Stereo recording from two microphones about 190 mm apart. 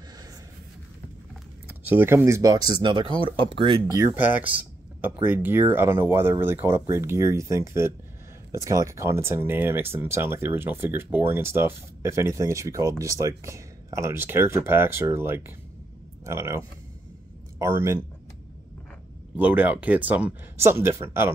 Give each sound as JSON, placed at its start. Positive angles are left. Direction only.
{"t": 1.7, "sound": "speech", "side_deg": -10}
{"t": 3.8, "sound": "speech", "side_deg": -10}
{"t": 19.3, "sound": "speech", "side_deg": -10}